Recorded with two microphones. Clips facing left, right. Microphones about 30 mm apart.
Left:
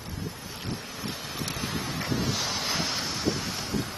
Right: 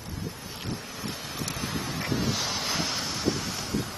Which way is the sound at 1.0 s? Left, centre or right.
Centre.